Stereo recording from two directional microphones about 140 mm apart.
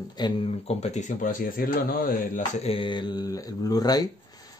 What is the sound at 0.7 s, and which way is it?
Speech, 50° left (ahead or behind).